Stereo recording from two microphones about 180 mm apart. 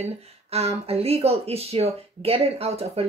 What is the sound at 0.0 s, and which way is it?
A woman's voice, 35° right (ahead or behind).